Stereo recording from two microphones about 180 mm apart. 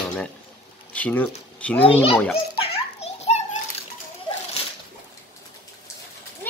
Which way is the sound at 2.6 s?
35° left (ahead or behind).